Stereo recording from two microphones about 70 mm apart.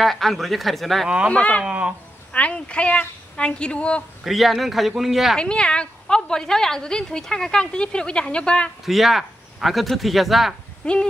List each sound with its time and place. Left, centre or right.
0.0 s speech: centre
1.3 s speech: centre
1.7 s speech: centre
2.3 s a woman's voice: centre
4.2 s speech: centre
5.4 s a woman's voice: centre
8.8 s speech: centre
10.8 s a woman's voice: centre